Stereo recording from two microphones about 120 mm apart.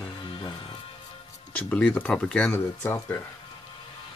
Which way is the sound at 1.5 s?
10° left (ahead or behind).